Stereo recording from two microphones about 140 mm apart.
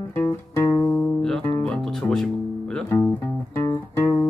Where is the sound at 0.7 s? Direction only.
5° left (ahead or behind).